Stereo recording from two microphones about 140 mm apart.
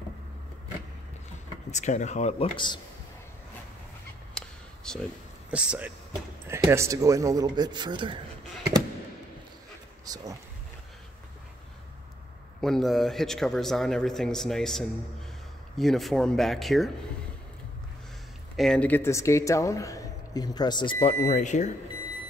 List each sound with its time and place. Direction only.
1.7 s speech: 55° left (ahead or behind); by 2.8 s 35° left (ahead or behind)
4.3 s fowl: 5° left (ahead or behind)
5.5 s speech: 10° right (ahead or behind); by 8.2 s 35° right (ahead or behind)
10.0 s speech: 25° right (ahead or behind)
12.5 s a man's voice: 5° left (ahead or behind)
18.6 s speech: 5° left (ahead or behind); by 20.9 s 30° left (ahead or behind)
21.0 s speech: 55° left (ahead or behind)